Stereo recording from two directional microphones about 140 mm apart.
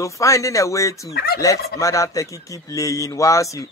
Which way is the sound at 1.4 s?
25° left (ahead or behind).